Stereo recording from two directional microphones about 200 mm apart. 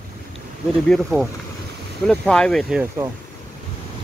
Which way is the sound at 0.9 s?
Centre (ahead or behind).